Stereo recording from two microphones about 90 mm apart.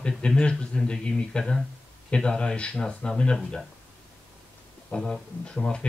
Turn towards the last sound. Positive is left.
turn(degrees=10)  # may be behind; listen again after turning